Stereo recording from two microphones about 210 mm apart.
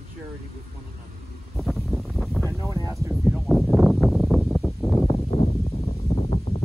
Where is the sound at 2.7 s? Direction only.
15° right (ahead or behind).